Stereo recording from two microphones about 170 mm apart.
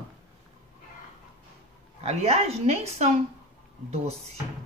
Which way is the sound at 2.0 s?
40° right (ahead or behind).